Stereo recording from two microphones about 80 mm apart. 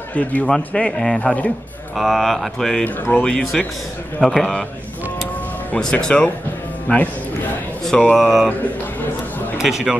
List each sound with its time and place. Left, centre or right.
0.1 s speech: centre
2.0 s speech: centre
2.8 s speech: centre
5.8 s speech: centre
7.8 s speech: centre
9.6 s speech: centre